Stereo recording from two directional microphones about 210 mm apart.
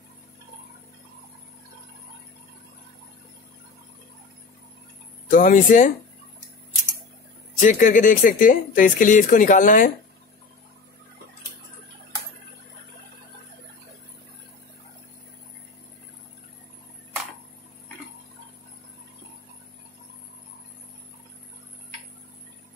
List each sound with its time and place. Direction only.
5.3 s speech: 40° left (ahead or behind)
7.5 s speech: 35° left (ahead or behind)